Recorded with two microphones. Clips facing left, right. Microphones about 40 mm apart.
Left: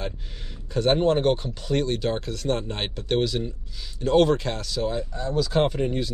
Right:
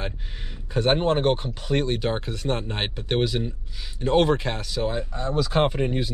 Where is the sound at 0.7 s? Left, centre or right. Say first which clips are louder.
Left 1 dB; right.